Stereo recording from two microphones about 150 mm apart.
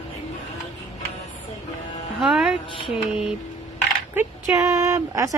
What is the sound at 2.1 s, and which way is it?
Music, centre (ahead or behind).